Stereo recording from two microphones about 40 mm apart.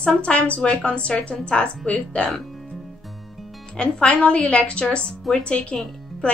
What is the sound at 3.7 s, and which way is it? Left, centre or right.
A woman's voice, left.